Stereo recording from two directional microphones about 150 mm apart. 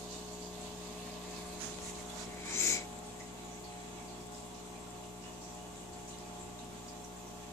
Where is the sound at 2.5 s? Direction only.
20° left (ahead or behind).